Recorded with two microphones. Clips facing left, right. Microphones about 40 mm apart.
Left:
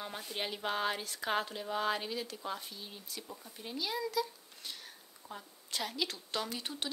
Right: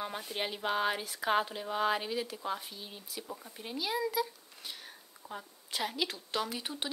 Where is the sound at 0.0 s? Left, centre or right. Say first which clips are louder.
Right 3 dB; centre.